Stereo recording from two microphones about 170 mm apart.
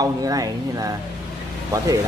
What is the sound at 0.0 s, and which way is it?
Speech, 20° right (ahead or behind).